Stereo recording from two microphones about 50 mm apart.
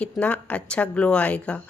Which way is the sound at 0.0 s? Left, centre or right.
Left.